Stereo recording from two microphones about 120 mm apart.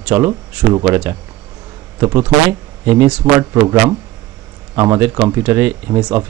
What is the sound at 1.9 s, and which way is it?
Speech, 15° right (ahead or behind).